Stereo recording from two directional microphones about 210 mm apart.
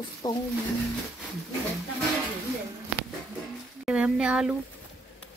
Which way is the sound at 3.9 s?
5° right (ahead or behind).